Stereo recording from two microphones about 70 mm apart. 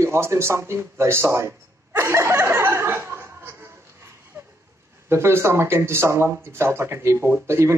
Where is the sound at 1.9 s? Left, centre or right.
Right.